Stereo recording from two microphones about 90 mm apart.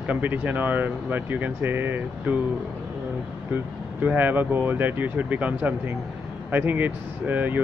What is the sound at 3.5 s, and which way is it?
Speech, 20° right (ahead or behind).